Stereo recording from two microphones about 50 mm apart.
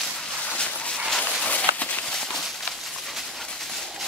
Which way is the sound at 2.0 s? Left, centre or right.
Centre.